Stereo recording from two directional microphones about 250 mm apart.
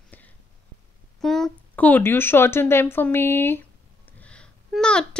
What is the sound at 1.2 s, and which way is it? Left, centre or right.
Speech, centre.